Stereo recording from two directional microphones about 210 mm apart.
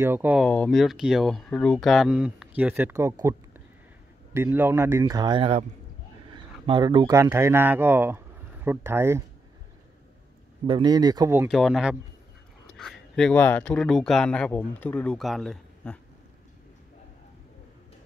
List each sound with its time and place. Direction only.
0.0 s a man's voice: 10° right (ahead or behind)
0.5 s a man's voice: 5° left (ahead or behind); by 9.2 s 10° right (ahead or behind)
10.7 s speech: 20° right (ahead or behind)
11.5 s speech: centre (ahead or behind)